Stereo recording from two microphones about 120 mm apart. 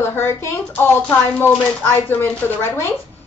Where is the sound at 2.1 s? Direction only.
15° left (ahead or behind).